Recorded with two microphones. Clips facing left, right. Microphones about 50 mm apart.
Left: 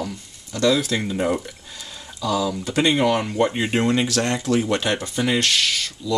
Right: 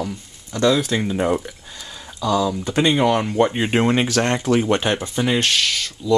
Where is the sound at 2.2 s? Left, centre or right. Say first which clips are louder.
Right 3 dB; centre.